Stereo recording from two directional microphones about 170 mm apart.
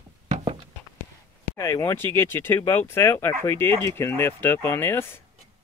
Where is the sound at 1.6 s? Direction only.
15° left (ahead or behind).